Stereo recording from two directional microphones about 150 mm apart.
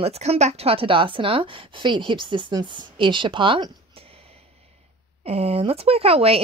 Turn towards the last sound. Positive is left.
turn(degrees=-40)  # may be behind; listen again after turning